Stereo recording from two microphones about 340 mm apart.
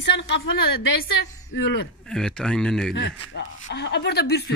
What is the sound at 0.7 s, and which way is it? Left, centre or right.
Speech, left.